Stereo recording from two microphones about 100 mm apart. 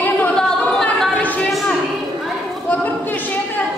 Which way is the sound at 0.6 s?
5° left (ahead or behind).